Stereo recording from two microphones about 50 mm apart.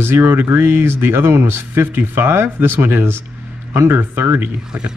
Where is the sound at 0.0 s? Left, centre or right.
Right.